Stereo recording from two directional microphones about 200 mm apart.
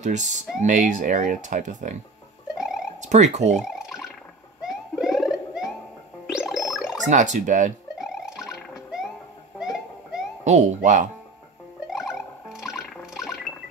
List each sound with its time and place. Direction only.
0.0 s speech: 35° right (ahead or behind)
2.5 s a sound: centre (ahead or behind)
3.0 s speech: 35° right (ahead or behind)
3.5 s drip: 5° right (ahead or behind)
4.6 s bird: centre (ahead or behind)
6.3 s music: centre (ahead or behind)
6.7 s a sound: 5° right (ahead or behind)
7.1 s speech: 35° right (ahead or behind)
8.0 s music: centre (ahead or behind)
9.6 s a sound: 5° right (ahead or behind)
10.4 s speech: 35° right (ahead or behind)
11.9 s music: centre (ahead or behind)